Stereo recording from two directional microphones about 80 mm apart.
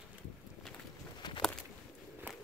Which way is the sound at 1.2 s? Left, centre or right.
Left.